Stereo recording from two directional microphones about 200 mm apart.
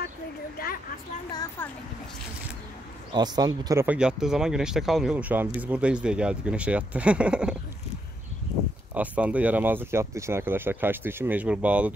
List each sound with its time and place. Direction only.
0.6 s a sound: 50° left (ahead or behind)
1.3 s speech: 20° left (ahead or behind)
3.1 s speech: 20° right (ahead or behind); by 7.5 s 5° right (ahead or behind)
8.9 s speech: 5° right (ahead or behind)